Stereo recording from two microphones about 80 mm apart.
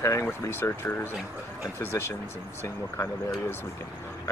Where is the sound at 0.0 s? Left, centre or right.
Left.